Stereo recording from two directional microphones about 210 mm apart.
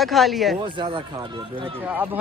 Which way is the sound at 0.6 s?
25° right (ahead or behind).